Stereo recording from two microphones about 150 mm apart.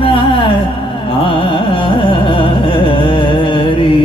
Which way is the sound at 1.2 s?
35° left (ahead or behind).